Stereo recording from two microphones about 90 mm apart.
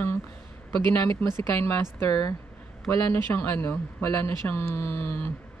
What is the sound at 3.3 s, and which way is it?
Speech, 25° left (ahead or behind).